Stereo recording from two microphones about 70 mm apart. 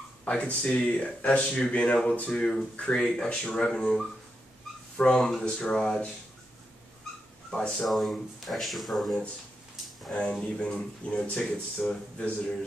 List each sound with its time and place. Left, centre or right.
0.2 s speech: centre
7.5 s speech: centre
7.9 s speech: centre
10.1 s speech: centre